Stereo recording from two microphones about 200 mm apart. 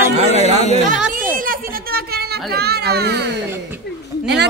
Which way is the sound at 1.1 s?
45° right (ahead or behind).